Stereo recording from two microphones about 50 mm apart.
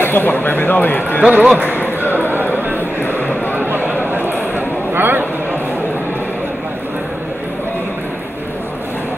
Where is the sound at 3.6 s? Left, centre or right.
Right.